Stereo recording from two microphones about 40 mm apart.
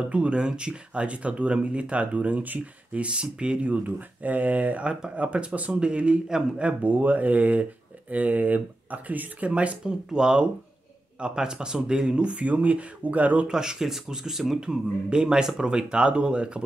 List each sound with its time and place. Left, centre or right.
0.1 s speech: right
3.6 s speech: right
6.6 s speech: right
9.5 s speech: right
9.8 s speech: centre; by 13.5 s right
13.5 s speech: centre